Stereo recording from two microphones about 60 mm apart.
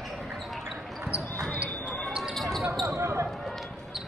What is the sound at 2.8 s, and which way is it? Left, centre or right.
Basketball bounce, right.